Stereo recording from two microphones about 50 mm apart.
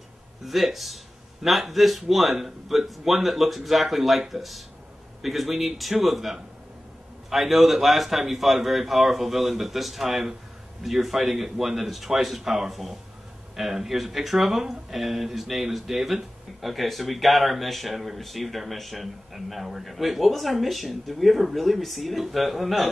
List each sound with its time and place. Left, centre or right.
0.5 s speech: centre